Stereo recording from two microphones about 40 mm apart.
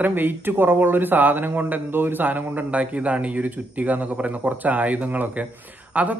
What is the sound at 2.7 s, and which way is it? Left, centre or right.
Speech, right.